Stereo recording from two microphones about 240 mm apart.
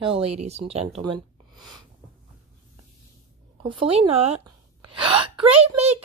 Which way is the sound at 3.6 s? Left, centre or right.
Right.